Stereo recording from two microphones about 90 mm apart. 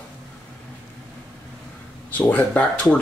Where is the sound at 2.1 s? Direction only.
20° left (ahead or behind).